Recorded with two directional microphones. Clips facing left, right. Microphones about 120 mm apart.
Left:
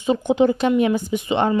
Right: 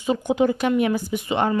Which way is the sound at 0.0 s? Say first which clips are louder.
Left 3 dB; 25° left (ahead or behind).